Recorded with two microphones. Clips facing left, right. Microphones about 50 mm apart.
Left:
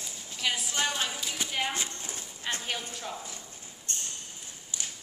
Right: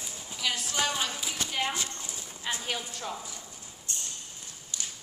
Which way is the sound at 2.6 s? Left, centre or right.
Centre.